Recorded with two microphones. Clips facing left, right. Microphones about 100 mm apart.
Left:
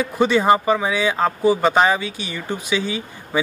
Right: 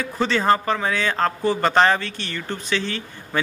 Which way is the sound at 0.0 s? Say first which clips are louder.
Left 4 dB; 15° left (ahead or behind).